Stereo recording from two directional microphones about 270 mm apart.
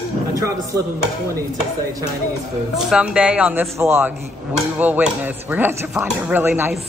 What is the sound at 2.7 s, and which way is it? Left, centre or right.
Speech, centre.